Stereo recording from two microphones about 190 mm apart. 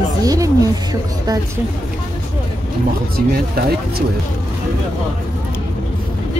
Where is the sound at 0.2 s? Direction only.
20° right (ahead or behind).